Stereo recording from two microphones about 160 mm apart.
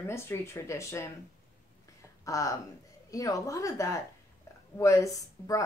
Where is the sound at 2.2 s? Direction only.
20° left (ahead or behind).